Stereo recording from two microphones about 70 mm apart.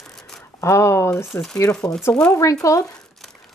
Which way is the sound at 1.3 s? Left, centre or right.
Left.